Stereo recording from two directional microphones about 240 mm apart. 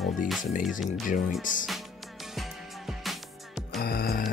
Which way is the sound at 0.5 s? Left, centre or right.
Left.